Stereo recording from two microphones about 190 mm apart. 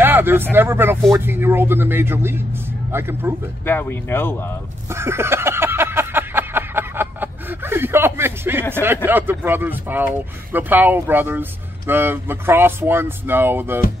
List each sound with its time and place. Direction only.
0.0 s speech: 10° right (ahead or behind)
3.6 s speech: 10° left (ahead or behind)
4.8 s a sound: 15° right (ahead or behind)
8.8 s speech: 10° right (ahead or behind)